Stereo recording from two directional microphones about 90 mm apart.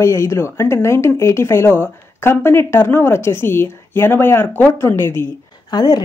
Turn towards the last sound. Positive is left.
turn(degrees=50)  # may be behind; listen again after turning